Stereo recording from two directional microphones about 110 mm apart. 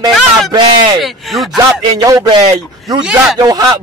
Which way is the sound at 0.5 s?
45° right (ahead or behind).